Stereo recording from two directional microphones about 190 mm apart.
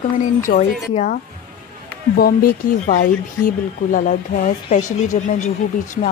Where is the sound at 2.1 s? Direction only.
55° left (ahead or behind).